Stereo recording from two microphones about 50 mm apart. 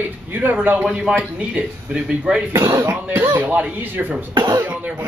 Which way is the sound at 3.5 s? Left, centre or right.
Right.